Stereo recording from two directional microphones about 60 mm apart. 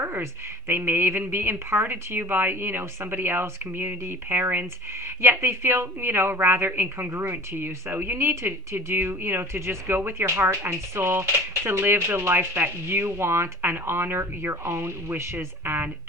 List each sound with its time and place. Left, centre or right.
0.0 s a woman's voice: right